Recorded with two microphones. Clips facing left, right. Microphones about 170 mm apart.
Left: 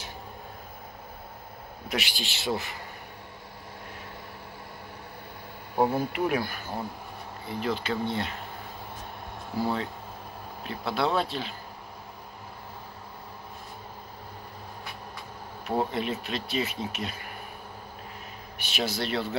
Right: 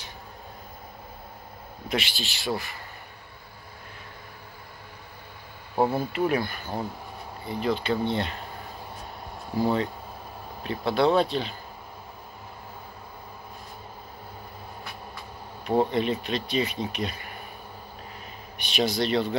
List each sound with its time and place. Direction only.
1.9 s speech: 10° left (ahead or behind)
5.9 s speech: 10° left (ahead or behind)
10.6 s speech: centre (ahead or behind)
15.6 s speech: 5° left (ahead or behind)
18.6 s speech: 5° left (ahead or behind)